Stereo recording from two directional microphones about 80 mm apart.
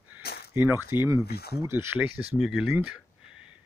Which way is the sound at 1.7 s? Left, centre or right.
Right.